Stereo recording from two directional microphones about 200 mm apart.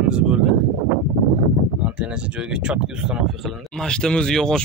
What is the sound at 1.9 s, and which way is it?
Speech, 5° right (ahead or behind).